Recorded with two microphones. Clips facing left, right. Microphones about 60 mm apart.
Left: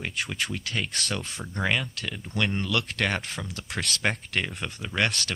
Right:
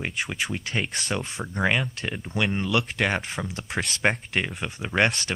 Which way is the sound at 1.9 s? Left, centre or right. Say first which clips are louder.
Right 3 dB; right.